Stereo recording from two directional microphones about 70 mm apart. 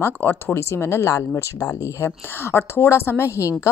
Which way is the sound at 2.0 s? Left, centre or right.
Left.